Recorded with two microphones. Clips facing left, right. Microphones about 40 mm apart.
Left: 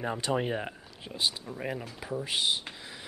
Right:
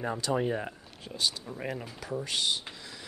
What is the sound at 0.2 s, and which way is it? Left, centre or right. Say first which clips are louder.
Speech: right 1 dB; left.